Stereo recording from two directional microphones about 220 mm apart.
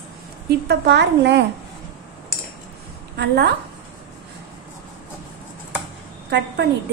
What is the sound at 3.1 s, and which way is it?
Speech, 50° right (ahead or behind).